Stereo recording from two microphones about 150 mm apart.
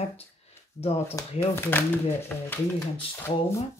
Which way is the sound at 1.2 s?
25° left (ahead or behind).